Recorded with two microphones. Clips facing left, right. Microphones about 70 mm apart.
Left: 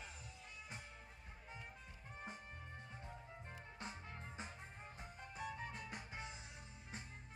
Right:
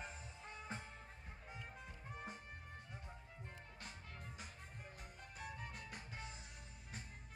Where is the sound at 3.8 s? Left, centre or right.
Left.